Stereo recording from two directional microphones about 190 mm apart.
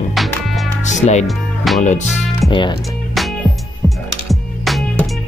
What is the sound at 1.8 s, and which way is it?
Speech, 40° left (ahead or behind).